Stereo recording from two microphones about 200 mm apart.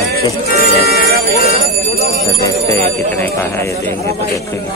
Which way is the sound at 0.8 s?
50° left (ahead or behind).